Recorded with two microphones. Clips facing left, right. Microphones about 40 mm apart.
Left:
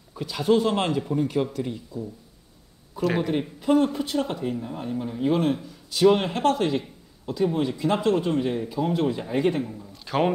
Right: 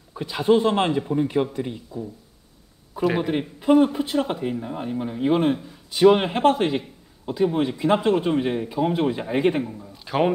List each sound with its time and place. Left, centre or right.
0.1 s speech: right
9.7 s a man's voice: centre